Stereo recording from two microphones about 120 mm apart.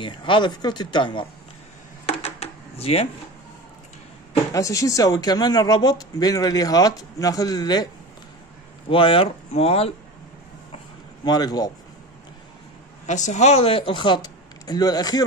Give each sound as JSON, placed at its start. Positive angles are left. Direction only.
{"t": 0.0, "sound": "speech", "side_deg": 45}
{"t": 2.0, "sound": "a sound", "side_deg": 60}
{"t": 4.5, "sound": "speech", "side_deg": 25}
{"t": 8.8, "sound": "speech", "side_deg": 45}
{"t": 11.2, "sound": "speech", "side_deg": 35}
{"t": 13.0, "sound": "speech", "side_deg": 85}